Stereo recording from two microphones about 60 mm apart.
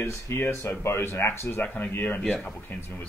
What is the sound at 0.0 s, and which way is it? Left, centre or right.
Speech, left.